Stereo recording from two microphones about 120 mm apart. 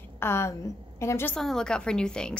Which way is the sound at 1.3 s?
5° left (ahead or behind).